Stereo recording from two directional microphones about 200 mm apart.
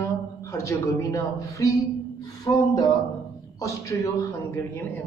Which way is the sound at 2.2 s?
20° left (ahead or behind).